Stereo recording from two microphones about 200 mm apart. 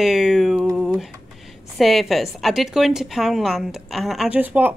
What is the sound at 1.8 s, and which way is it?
A woman's voice, centre (ahead or behind).